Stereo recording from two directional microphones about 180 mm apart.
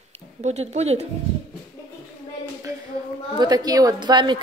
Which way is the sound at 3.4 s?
20° right (ahead or behind).